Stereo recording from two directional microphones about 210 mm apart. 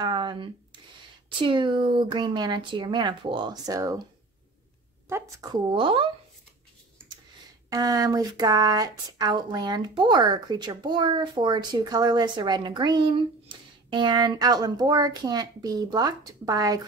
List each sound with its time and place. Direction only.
0.0 s a sound: 20° right (ahead or behind)
1.4 s speech: 20° right (ahead or behind)
5.0 s a woman's voice: 15° right (ahead or behind)
7.7 s speech: 15° right (ahead or behind)